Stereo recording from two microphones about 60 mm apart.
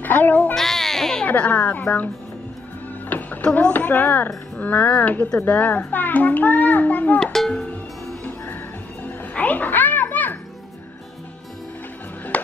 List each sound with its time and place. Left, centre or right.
0.0 s child singing: left
0.6 s baby cry: centre
1.2 s speech: left
3.1 s music: left
3.6 s a child's voice: left
8.2 s music: left